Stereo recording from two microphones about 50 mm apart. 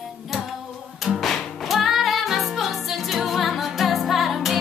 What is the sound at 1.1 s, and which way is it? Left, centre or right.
Music, centre.